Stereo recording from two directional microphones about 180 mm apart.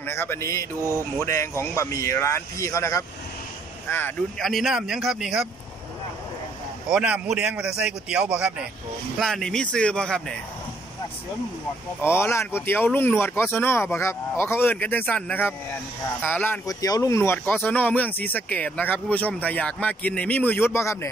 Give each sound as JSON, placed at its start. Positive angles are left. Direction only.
{"t": 0.0, "sound": "speech", "side_deg": 15}
{"t": 4.4, "sound": "speech", "side_deg": 0}
{"t": 6.9, "sound": "speech", "side_deg": -5}
{"t": 12.0, "sound": "speech", "side_deg": 15}